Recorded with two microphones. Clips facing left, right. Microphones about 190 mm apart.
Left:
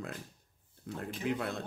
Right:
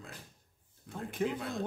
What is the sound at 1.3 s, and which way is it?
Speech, 60° left (ahead or behind).